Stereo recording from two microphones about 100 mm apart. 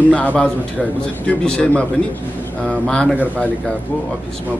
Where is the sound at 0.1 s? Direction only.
15° left (ahead or behind).